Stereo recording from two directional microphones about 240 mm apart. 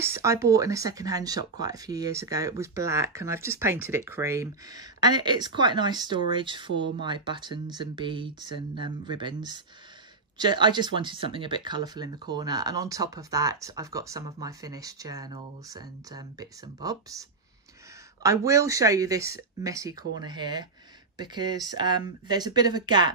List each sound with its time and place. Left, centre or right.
0.0 s speech: centre
18.2 s speech: centre